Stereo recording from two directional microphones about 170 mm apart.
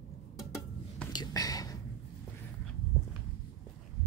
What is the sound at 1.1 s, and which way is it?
Whispering, 25° left (ahead or behind).